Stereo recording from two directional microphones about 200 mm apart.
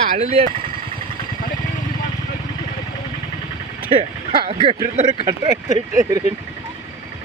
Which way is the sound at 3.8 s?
25° right (ahead or behind).